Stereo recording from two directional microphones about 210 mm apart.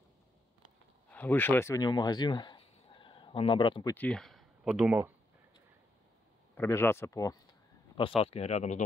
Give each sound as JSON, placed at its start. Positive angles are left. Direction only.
{"t": 1.1, "sound": "speech", "side_deg": 10}
{"t": 3.9, "sound": "speech", "side_deg": 5}
{"t": 6.5, "sound": "speech", "side_deg": 10}
{"t": 8.2, "sound": "speech", "side_deg": 30}